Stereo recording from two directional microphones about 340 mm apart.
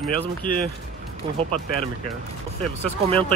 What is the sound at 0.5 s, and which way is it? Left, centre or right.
Speech, left.